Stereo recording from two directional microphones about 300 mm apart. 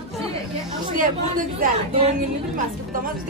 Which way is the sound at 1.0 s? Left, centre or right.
Right.